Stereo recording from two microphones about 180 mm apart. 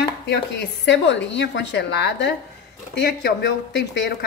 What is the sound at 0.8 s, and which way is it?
Speech, 80° left.